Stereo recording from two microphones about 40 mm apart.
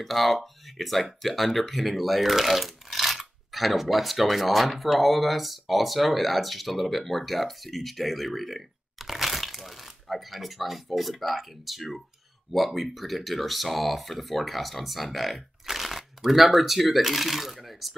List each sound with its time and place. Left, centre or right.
0.0 s speech: centre